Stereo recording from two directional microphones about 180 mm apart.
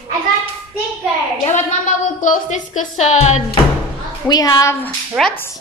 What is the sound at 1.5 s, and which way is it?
Speech, 45° left (ahead or behind).